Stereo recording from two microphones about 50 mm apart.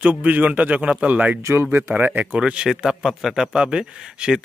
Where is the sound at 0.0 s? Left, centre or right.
Right.